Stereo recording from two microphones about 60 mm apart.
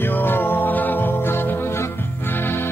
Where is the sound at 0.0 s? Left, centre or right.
Left.